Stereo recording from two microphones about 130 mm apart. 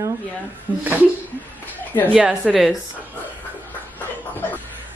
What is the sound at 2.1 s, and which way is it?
Speech, 10° right (ahead or behind).